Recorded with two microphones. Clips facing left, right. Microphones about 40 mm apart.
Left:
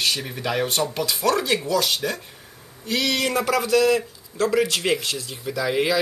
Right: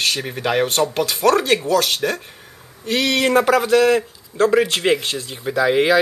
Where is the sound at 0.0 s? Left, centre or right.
Right.